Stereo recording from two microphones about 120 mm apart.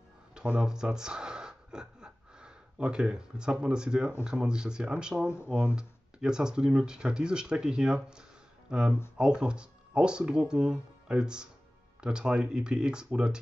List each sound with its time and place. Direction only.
0.3 s speech: 5° right (ahead or behind)